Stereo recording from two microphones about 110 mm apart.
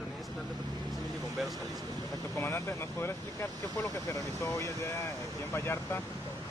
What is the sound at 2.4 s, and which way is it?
Speech, 20° left (ahead or behind).